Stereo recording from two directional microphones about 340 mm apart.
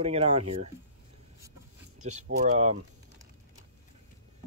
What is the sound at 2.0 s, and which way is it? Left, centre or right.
Speech, right.